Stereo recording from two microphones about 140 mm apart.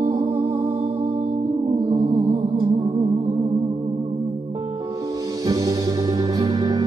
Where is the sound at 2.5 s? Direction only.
40° right (ahead or behind).